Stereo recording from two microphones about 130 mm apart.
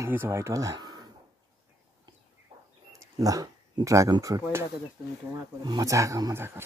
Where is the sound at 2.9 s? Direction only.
25° right (ahead or behind).